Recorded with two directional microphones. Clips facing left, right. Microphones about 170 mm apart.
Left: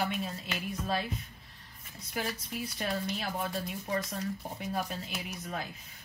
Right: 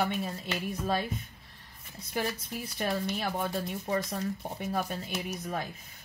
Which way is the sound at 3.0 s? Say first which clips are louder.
Right 3 dB; 40° right (ahead or behind).